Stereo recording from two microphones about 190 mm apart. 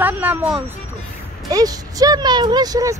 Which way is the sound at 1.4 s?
20° right (ahead or behind).